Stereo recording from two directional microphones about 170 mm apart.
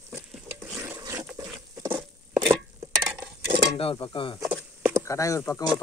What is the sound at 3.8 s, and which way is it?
Speech, 30° left (ahead or behind).